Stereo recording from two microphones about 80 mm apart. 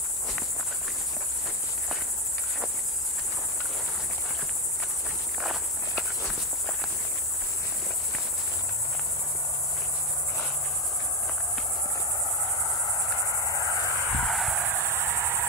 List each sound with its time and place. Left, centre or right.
5.4 s insect: centre
13.5 s cricket: left
14.0 s a sound: centre
14.6 s cricket: right